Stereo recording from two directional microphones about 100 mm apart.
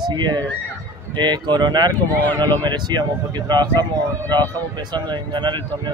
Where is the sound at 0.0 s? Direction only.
45° right (ahead or behind).